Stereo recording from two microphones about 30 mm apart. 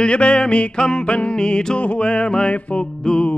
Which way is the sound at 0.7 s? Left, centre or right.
Left.